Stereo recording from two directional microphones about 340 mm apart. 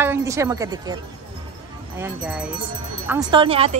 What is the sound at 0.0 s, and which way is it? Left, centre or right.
Speech, centre.